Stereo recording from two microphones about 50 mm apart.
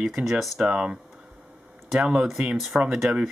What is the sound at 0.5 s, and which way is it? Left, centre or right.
Speech, centre.